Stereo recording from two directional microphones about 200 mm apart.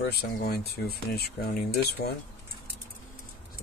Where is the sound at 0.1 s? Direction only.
50° left (ahead or behind).